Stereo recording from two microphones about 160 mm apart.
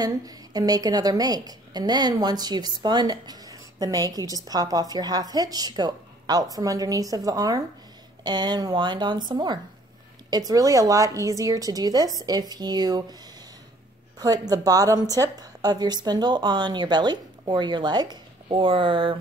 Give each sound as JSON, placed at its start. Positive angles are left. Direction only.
{"t": 0.0, "sound": "a woman's voice", "side_deg": -25}
{"t": 14.2, "sound": "a woman's voice", "side_deg": -25}